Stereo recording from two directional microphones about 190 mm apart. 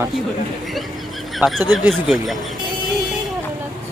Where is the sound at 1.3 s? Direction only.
Centre (ahead or behind).